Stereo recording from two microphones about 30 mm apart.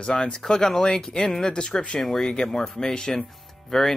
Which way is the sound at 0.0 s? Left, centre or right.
Left.